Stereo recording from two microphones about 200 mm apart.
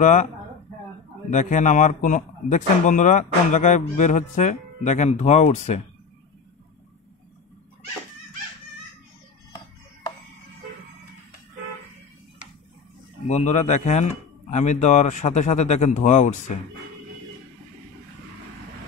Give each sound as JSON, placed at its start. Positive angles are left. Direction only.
{"t": 0.0, "sound": "speech", "side_deg": 40}
{"t": 1.3, "sound": "speech", "side_deg": 40}
{"t": 13.3, "sound": "speech", "side_deg": 35}